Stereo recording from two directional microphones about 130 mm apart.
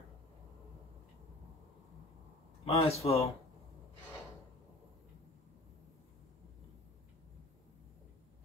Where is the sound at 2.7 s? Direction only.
50° left (ahead or behind).